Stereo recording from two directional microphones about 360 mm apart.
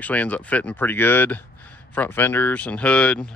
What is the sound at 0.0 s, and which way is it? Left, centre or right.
Speech, centre.